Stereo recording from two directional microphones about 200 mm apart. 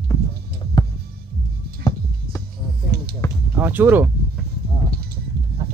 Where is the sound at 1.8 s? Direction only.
15° left (ahead or behind).